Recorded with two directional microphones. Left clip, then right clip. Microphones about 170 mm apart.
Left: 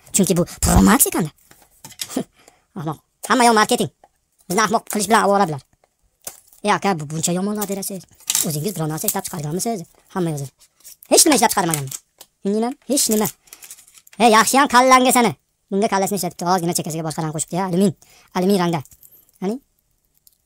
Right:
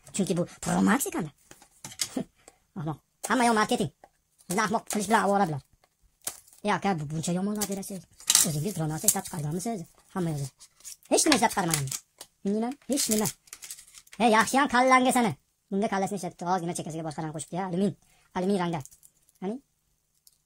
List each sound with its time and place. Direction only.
0.1 s a woman's voice: 45° left (ahead or behind)